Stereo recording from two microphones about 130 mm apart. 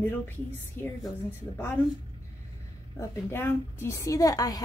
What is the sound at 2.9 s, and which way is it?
A woman's voice, 15° left (ahead or behind).